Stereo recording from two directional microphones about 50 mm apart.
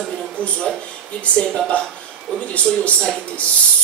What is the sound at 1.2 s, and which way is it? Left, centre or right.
A woman's voice, left.